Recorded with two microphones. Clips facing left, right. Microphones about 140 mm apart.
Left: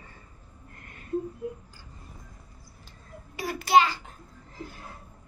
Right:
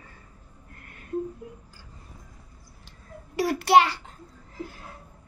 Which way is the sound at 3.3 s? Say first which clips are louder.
Right 3 dB; 75° right (ahead or behind).